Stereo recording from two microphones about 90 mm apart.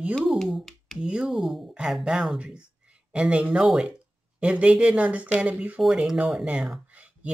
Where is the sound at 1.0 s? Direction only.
10° right (ahead or behind).